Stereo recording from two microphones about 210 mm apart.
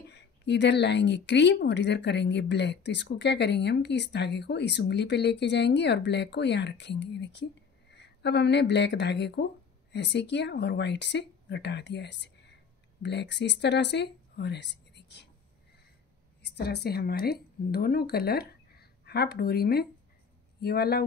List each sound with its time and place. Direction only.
0.1 s speech: 55° left (ahead or behind)
16.4 s speech: 50° left (ahead or behind)